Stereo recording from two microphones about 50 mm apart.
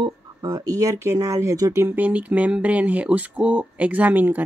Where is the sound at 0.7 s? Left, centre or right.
Right.